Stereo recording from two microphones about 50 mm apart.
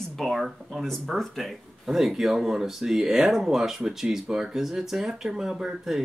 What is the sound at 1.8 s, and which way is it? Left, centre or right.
Speech, centre.